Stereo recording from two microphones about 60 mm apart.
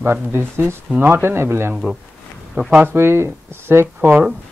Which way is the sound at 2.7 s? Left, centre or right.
Right.